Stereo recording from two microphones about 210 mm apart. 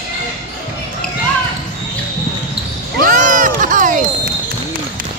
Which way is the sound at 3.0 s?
40° right (ahead or behind).